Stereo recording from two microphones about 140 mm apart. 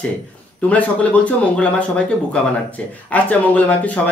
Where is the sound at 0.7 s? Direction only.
10° left (ahead or behind).